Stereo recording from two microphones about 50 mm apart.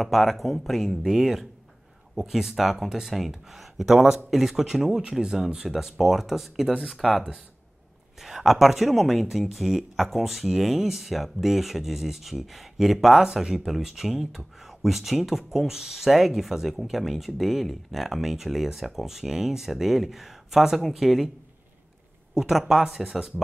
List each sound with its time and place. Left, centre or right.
0.0 s speech: centre
22.3 s speech: centre